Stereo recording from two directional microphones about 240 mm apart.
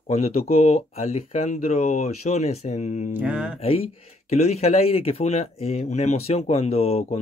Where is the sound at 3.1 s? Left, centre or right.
Centre.